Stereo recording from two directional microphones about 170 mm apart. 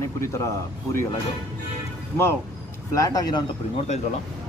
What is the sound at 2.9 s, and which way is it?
Speech, 20° left (ahead or behind).